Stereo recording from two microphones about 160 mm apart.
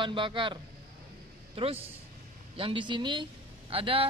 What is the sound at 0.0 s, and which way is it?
A man's voice, 30° right (ahead or behind).